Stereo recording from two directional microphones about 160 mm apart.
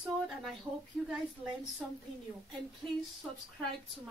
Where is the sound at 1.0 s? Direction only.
Centre (ahead or behind).